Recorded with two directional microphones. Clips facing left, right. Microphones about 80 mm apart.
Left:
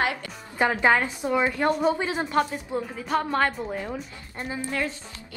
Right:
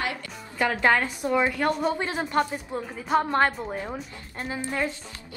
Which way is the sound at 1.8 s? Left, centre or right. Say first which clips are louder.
Left 2 dB; centre.